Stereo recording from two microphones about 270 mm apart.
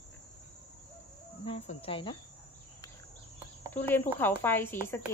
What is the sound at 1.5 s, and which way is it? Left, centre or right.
Speech, left.